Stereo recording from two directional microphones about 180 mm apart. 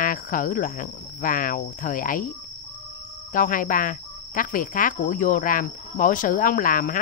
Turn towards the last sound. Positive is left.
turn(degrees=50)  # may be behind; listen again after turning